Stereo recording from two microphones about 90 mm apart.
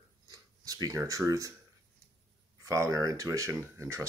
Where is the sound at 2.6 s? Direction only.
35° right (ahead or behind).